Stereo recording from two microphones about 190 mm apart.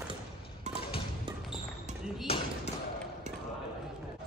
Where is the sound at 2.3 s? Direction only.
30° left (ahead or behind).